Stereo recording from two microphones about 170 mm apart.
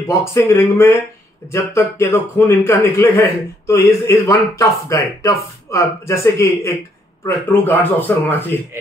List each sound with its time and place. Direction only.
0.1 s a man's voice: 15° left (ahead or behind)